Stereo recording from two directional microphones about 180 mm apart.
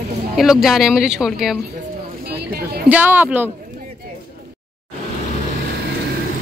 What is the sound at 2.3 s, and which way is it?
Speech, 60° right (ahead or behind).